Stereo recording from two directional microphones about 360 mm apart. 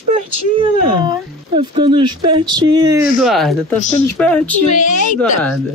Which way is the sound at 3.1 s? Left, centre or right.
Centre.